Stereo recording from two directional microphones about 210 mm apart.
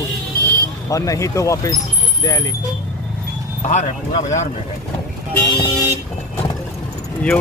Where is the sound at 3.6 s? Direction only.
35° left (ahead or behind).